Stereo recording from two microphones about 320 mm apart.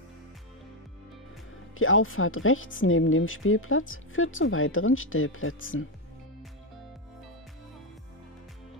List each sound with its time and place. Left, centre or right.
1.8 s speech: left